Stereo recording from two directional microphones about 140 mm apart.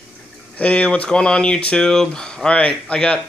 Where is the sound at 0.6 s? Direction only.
10° left (ahead or behind).